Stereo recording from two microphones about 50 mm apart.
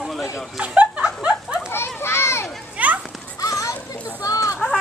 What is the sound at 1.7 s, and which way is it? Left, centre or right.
Children playing, left.